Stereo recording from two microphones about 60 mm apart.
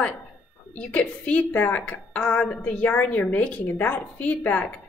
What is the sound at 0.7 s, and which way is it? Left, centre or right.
A woman's voice, left.